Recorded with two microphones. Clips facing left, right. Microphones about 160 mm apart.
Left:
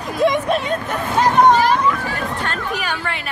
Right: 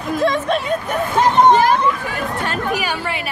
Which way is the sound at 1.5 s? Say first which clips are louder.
Right 1 dB; 50° right (ahead or behind).